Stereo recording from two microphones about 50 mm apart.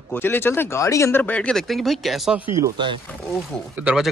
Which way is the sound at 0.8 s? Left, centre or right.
Left.